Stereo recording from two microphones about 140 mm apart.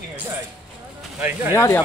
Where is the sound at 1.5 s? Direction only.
20° left (ahead or behind).